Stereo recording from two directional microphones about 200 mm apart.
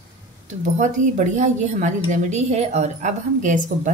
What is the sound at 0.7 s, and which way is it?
A woman's voice, 40° right (ahead or behind).